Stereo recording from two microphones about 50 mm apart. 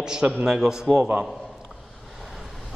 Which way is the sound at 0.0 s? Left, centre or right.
Centre.